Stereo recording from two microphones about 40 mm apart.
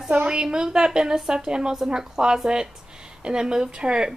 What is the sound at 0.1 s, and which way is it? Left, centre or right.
A woman's voice, right.